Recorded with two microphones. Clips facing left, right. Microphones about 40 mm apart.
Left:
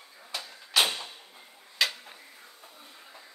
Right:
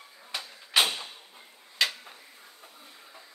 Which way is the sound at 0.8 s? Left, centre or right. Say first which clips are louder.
Even; centre.